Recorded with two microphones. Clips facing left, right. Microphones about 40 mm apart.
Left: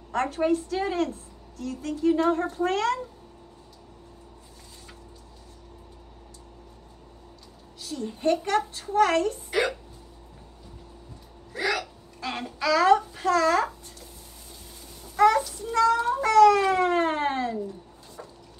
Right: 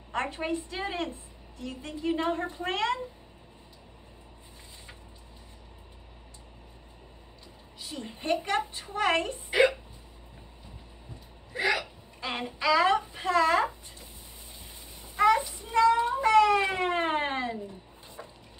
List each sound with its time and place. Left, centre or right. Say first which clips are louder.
0.1 s a woman's voice: left 6 dB; right
7.8 s a woman's voice: left 10 dB; right
11.5 s hiccup: even; right
15.1 s a sound: left 3 dB; right